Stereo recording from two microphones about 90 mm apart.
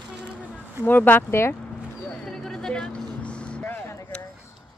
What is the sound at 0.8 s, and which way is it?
Speech, 20° left (ahead or behind).